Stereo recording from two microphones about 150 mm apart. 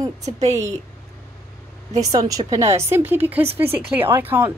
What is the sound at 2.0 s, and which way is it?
A woman's voice, 25° right (ahead or behind).